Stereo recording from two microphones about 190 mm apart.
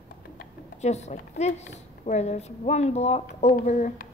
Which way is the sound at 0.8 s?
35° left (ahead or behind).